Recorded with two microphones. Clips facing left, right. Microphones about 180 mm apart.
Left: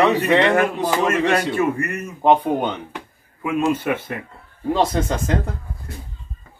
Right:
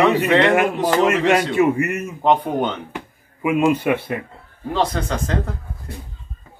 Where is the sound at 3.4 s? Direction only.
10° right (ahead or behind).